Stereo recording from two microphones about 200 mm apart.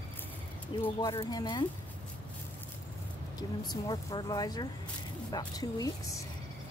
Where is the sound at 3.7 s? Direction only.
20° left (ahead or behind).